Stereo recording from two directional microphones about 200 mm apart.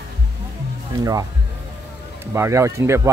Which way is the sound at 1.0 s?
15° right (ahead or behind).